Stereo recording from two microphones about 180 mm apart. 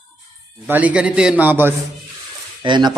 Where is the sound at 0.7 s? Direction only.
5° right (ahead or behind).